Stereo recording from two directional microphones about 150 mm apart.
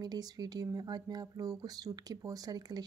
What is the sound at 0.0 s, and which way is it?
Speech, 25° right (ahead or behind).